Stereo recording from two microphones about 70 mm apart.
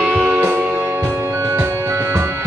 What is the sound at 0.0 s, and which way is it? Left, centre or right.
Music, centre.